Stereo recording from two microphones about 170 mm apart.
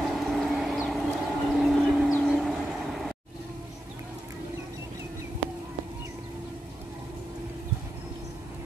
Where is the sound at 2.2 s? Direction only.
Centre (ahead or behind).